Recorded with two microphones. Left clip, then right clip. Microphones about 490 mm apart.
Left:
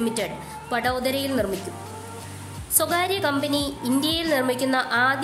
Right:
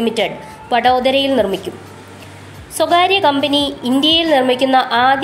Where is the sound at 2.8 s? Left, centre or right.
Left.